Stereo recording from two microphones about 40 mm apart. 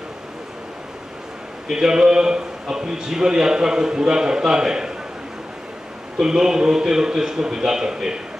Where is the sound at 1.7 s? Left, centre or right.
Centre.